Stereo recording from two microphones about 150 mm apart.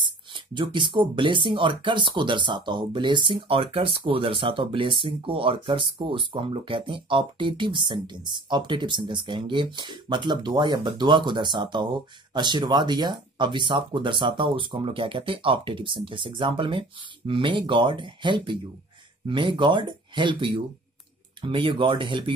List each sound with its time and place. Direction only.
0.0 s speech: 30° right (ahead or behind)